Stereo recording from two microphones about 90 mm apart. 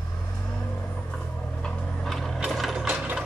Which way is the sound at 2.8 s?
15° right (ahead or behind).